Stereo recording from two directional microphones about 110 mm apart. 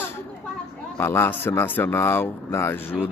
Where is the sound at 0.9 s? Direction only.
20° left (ahead or behind).